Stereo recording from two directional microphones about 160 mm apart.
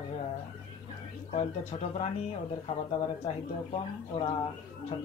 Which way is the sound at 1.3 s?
40° left (ahead or behind).